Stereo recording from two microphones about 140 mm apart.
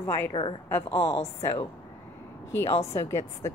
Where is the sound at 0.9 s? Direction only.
45° left (ahead or behind).